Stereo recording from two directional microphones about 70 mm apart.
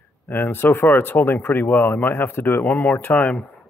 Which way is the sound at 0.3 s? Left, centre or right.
Left.